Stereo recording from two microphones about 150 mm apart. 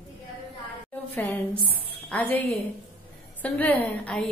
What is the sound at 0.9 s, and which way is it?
A woman's voice, 10° left (ahead or behind).